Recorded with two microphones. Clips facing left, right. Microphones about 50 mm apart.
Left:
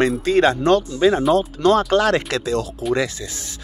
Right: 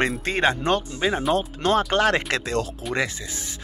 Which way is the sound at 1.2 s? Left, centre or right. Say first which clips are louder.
Left 5 dB; centre.